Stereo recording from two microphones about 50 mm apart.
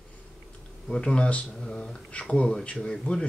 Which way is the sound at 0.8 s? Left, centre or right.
Centre.